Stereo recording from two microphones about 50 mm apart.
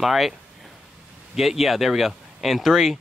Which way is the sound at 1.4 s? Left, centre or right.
Centre.